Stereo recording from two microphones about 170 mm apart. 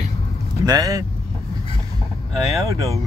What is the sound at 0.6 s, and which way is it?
Speech, 20° right (ahead or behind).